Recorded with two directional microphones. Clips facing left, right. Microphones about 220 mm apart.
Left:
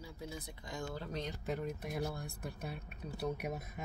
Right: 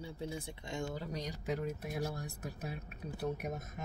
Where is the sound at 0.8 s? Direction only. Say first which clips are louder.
Left 3 dB; 10° right (ahead or behind).